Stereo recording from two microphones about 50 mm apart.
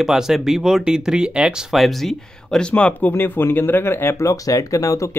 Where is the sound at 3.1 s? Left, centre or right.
Left.